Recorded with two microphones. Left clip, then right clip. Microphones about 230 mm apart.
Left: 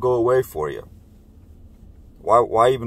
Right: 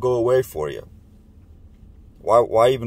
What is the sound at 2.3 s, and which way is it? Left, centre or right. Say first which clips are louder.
Speech: even; right.